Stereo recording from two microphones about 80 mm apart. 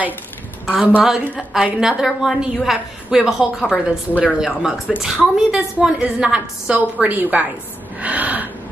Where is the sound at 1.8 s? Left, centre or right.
Centre.